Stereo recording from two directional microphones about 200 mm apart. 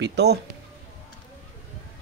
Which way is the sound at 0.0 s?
55° right (ahead or behind).